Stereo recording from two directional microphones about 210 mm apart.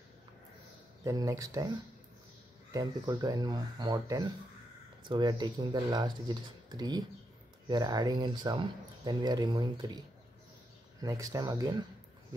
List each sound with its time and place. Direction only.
1.0 s speech: 15° right (ahead or behind)
2.7 s speech: 20° right (ahead or behind)
11.0 s speech: 15° right (ahead or behind)